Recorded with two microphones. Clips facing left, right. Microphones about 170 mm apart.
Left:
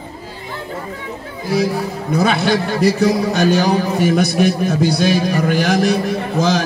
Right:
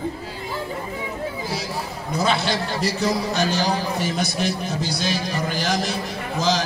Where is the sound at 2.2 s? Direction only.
55° left (ahead or behind).